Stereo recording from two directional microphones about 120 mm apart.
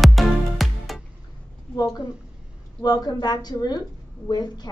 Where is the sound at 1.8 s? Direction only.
35° left (ahead or behind).